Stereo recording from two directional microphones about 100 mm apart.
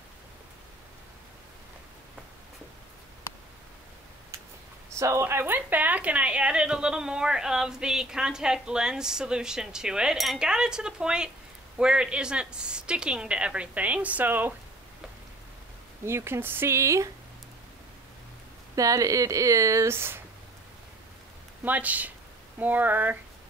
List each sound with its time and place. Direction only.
4.9 s a woman's voice: 30° right (ahead or behind)
16.1 s speech: 25° right (ahead or behind)
18.8 s speech: 35° right (ahead or behind)
21.6 s a woman's voice: 15° right (ahead or behind)